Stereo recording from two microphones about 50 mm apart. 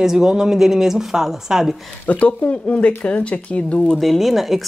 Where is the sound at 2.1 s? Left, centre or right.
Left.